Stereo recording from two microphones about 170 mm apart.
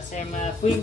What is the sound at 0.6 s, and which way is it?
Speech, 40° left (ahead or behind).